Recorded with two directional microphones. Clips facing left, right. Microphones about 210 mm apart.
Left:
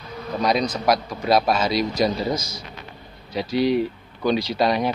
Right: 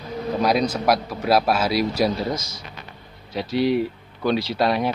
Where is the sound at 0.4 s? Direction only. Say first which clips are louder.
Right 1 dB; 5° right (ahead or behind).